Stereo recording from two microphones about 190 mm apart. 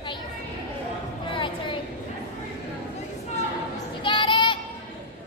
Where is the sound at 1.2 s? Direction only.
25° left (ahead or behind).